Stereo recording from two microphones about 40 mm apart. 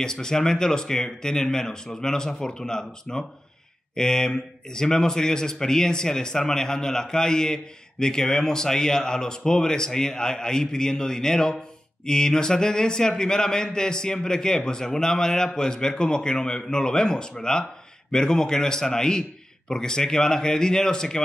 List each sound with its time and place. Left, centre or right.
0.0 s speech: centre